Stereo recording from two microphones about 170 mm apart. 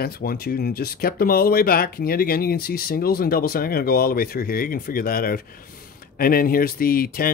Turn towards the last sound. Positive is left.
turn(degrees=60)  # may be behind; listen again after turning